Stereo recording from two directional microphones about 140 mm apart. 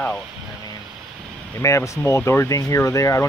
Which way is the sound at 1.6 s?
20° left (ahead or behind).